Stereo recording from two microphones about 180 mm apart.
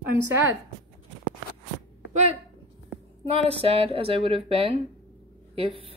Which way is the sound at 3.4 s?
30° right (ahead or behind).